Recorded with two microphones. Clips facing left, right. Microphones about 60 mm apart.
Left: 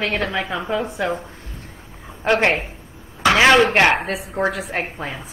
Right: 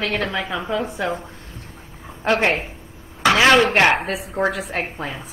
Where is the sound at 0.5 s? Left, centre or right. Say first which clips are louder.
Left 1 dB; centre.